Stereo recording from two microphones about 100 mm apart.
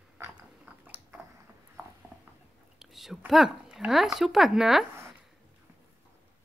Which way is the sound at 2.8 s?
5° right (ahead or behind).